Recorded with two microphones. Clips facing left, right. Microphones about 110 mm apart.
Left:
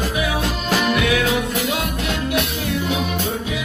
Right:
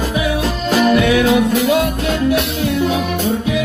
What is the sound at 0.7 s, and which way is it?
Music, 35° right (ahead or behind).